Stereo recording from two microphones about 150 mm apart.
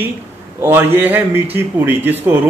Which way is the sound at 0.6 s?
15° right (ahead or behind).